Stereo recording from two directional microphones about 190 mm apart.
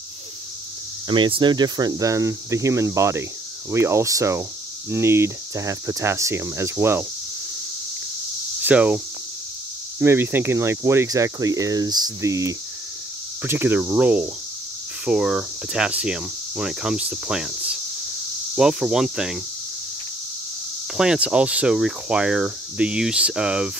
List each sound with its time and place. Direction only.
1.0 s speech: 25° right (ahead or behind)
8.6 s speech: 10° right (ahead or behind)
20.9 s speech: 5° right (ahead or behind)